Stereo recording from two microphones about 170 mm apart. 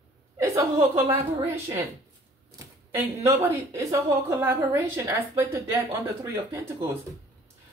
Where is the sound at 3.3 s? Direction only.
15° right (ahead or behind).